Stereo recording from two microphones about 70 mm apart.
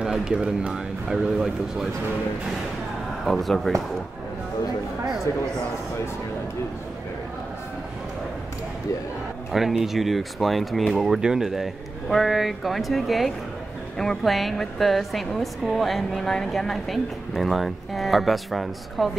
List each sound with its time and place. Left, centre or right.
0.0 s speech: centre
3.3 s a woman's voice: centre
9.5 s a woman's voice: centre